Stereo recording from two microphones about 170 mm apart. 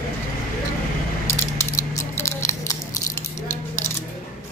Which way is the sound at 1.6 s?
15° left (ahead or behind).